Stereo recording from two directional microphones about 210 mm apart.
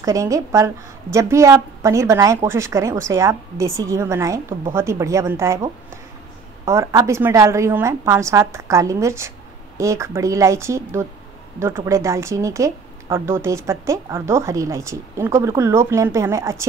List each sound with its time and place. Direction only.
0.0 s speech: 15° right (ahead or behind)